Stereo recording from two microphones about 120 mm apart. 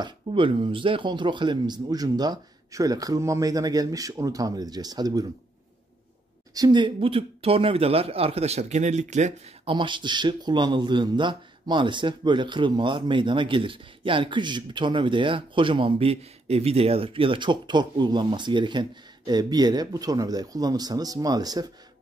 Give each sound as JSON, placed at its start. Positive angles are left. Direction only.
{"t": 0.0, "sound": "speech", "side_deg": -45}
{"t": 6.5, "sound": "speech", "side_deg": -35}
{"t": 9.7, "sound": "speech", "side_deg": -40}